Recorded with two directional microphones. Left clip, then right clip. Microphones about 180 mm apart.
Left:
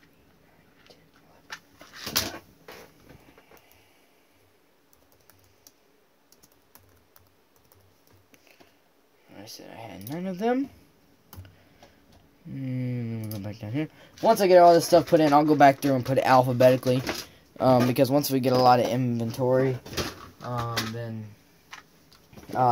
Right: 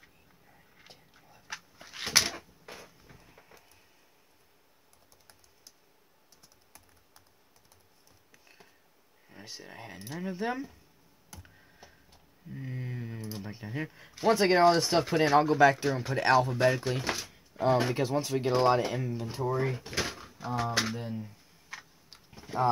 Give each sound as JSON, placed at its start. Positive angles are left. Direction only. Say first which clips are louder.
{"t": 9.3, "sound": "speech", "louder": "left 2 dB", "side_deg": 45}
{"t": 12.6, "sound": "keys jangling", "louder": "left 9 dB", "side_deg": 45}
{"t": 15.1, "sound": "speech", "louder": "left 1 dB", "side_deg": 40}
{"t": 17.6, "sound": "speech", "louder": "left 6 dB", "side_deg": 60}
{"t": 20.4, "sound": "speech", "louder": "even", "side_deg": 0}
{"t": 22.3, "sound": "tick-tock", "louder": "left 5 dB", "side_deg": 20}